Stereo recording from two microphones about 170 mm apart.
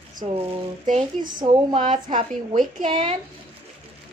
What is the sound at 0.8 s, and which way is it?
Speech, 50° right (ahead or behind).